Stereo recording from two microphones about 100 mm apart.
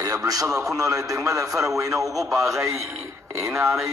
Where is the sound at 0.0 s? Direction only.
35° right (ahead or behind).